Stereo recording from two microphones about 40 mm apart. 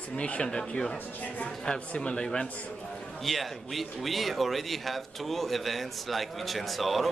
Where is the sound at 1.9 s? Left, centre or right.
Left.